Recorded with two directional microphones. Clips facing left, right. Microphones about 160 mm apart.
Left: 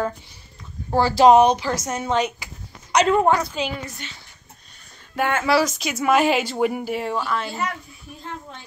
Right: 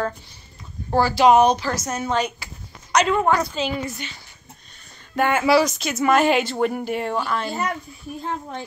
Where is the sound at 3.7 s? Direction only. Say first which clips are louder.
Right 5 dB; centre (ahead or behind).